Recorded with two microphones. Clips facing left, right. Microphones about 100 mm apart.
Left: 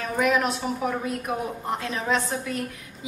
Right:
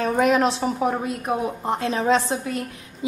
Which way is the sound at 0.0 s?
35° right (ahead or behind).